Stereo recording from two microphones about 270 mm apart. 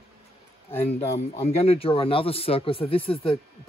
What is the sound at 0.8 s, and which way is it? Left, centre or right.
Speech, left.